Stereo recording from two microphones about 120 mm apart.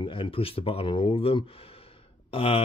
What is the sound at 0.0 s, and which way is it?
Speech, 45° left (ahead or behind).